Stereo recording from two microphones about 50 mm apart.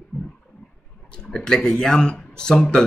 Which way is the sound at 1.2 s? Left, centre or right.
Centre.